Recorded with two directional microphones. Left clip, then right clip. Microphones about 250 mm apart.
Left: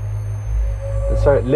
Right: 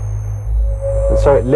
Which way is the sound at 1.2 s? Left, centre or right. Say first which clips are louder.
Right 2 dB; centre.